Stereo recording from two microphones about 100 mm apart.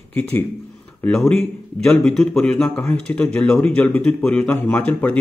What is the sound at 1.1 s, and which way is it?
Speech, 5° left (ahead or behind).